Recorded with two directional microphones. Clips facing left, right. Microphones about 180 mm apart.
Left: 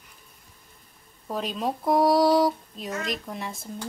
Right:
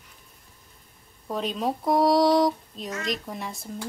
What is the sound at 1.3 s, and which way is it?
Speech, centre (ahead or behind).